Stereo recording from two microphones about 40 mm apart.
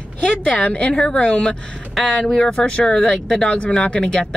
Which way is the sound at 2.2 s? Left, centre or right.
Centre.